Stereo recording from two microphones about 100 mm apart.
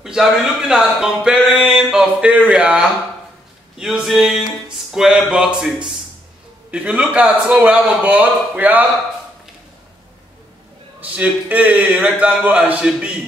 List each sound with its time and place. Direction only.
0.0 s a man's voice: 5° right (ahead or behind)
11.1 s a man's voice: 15° right (ahead or behind)